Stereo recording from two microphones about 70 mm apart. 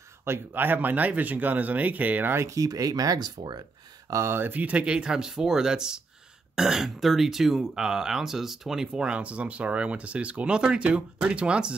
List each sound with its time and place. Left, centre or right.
0.2 s speech: right
2.3 s speech: right
4.1 s speech: right; by 11.7 s centre